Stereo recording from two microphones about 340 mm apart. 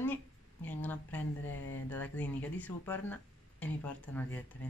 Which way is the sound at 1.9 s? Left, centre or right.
Centre.